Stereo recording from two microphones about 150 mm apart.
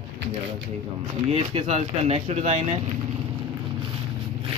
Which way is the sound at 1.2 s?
45° right (ahead or behind).